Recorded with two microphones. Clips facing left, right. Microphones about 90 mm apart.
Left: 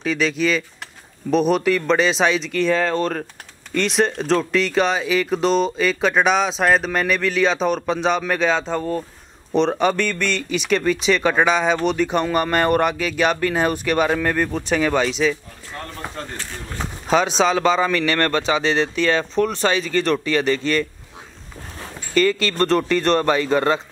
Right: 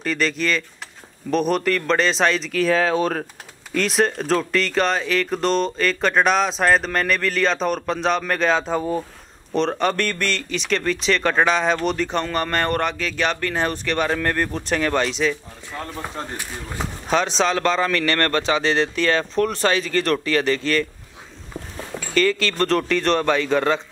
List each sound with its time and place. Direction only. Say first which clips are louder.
0.0 s speech: left 2 dB; centre (ahead or behind)
16.2 s speech: right 1 dB; 20° right (ahead or behind)
17.1 s speech: left 3 dB; 5° left (ahead or behind)
22.1 s speech: left 2 dB; 5° left (ahead or behind)